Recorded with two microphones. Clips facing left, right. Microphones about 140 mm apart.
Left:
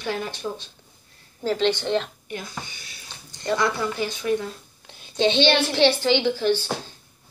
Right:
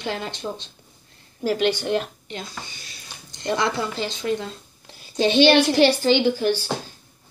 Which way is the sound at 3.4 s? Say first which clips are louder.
Even; 20° right (ahead or behind).